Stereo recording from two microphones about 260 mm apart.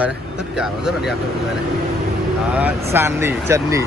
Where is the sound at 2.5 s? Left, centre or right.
Centre.